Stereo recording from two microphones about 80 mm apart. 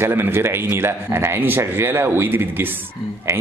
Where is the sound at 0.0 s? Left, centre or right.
Right.